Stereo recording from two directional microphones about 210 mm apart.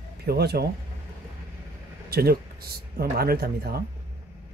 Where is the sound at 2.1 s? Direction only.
45° right (ahead or behind).